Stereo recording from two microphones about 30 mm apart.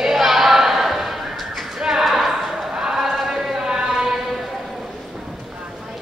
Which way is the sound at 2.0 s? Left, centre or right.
Centre.